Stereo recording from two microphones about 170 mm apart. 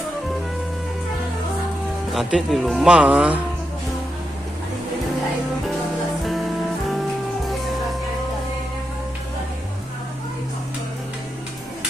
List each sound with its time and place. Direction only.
2.1 s speech: centre (ahead or behind)